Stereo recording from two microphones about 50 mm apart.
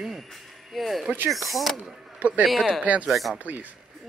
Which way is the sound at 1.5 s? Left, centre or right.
Centre.